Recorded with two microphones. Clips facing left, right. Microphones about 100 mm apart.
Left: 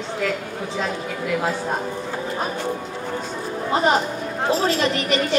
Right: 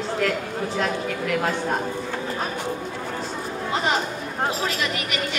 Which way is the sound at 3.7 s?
30° left (ahead or behind).